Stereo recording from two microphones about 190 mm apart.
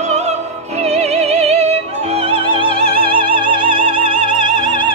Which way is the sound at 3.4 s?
25° right (ahead or behind).